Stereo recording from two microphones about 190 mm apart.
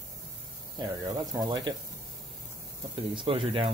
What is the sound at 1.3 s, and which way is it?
Speech, 25° right (ahead or behind).